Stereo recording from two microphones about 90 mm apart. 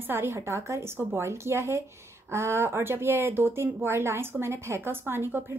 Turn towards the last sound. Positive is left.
turn(degrees=-25)  # may be behind; listen again after turning